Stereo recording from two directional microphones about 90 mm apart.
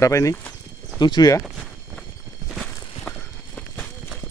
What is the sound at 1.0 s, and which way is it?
Speech, 50° left (ahead or behind).